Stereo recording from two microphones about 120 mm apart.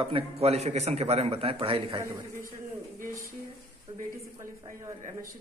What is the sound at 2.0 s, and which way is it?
Speech, 25° right (ahead or behind).